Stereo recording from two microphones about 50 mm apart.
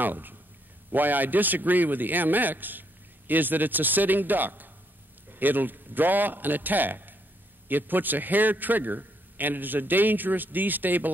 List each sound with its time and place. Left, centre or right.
0.0 s a man's voice: right